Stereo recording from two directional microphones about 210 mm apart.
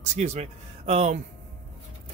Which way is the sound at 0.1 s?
30° right (ahead or behind).